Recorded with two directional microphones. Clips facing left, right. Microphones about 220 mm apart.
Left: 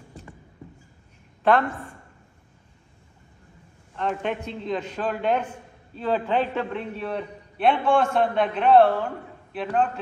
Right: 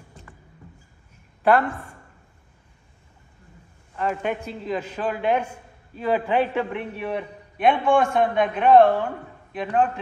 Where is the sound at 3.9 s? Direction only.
5° right (ahead or behind).